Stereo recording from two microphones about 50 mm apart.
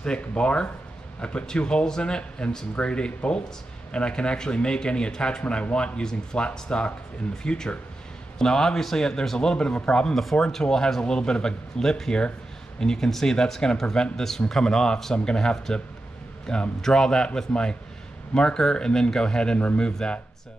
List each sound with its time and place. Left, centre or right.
0.0 s speech: centre